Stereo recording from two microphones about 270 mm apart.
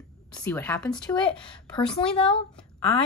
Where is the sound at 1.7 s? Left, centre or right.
Centre.